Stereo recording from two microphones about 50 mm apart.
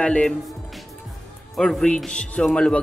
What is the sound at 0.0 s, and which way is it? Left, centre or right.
Speech, left.